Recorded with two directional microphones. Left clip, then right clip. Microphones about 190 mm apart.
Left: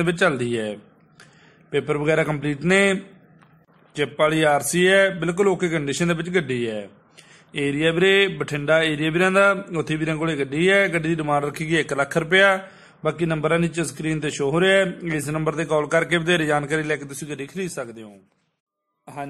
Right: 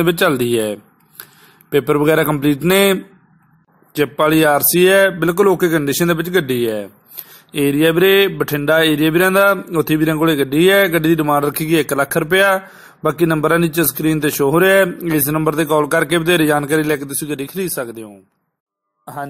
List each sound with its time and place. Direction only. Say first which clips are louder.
0.0 s mantra: right 6 dB; 25° right (ahead or behind)